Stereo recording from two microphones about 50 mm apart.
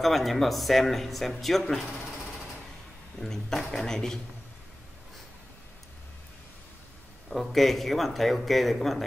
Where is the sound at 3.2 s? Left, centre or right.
Centre.